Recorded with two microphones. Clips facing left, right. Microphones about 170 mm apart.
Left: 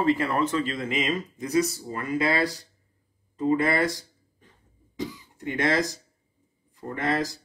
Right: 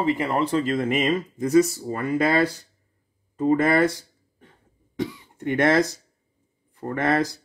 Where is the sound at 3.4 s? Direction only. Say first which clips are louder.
Right 4 dB; 55° right (ahead or behind).